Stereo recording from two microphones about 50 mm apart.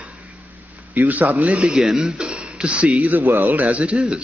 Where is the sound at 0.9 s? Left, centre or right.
Right.